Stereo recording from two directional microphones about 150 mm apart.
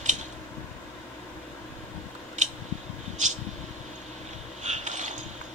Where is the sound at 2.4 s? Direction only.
55° right (ahead or behind).